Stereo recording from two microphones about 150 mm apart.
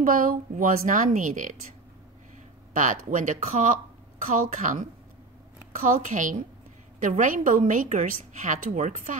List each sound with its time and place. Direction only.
0.0 s a woman's voice: 65° right (ahead or behind)
2.7 s a woman's voice: 60° right (ahead or behind)